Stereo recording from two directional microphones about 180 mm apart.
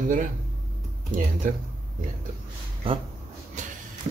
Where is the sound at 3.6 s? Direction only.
40° right (ahead or behind).